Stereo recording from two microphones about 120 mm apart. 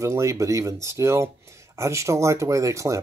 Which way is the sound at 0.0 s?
25° right (ahead or behind).